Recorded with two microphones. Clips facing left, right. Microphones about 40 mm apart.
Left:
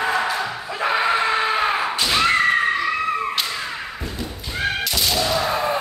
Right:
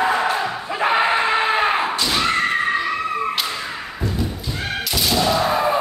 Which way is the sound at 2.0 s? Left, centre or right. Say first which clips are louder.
Left 1 dB; left.